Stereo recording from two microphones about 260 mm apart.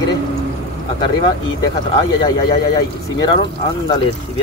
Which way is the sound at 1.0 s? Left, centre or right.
Centre.